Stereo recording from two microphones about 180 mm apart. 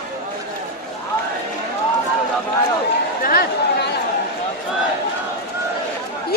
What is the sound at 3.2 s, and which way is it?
Chatter, 55° left (ahead or behind).